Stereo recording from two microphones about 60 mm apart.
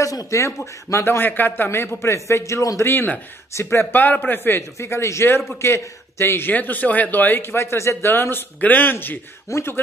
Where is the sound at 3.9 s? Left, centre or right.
Left.